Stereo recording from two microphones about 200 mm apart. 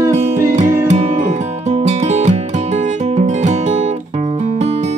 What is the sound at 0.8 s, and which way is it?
Music, 35° right (ahead or behind).